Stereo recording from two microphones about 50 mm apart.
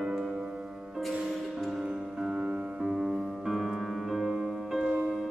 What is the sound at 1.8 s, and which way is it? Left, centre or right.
Music, centre.